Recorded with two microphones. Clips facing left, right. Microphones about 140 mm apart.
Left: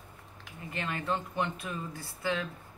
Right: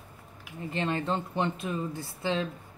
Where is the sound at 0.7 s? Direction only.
25° right (ahead or behind).